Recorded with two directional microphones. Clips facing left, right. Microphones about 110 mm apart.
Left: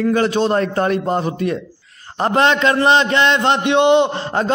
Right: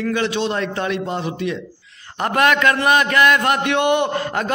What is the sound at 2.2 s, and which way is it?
A man's voice, 30° left (ahead or behind).